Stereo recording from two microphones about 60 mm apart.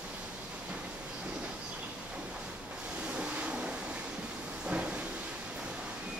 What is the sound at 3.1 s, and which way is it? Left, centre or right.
Vehicle, centre.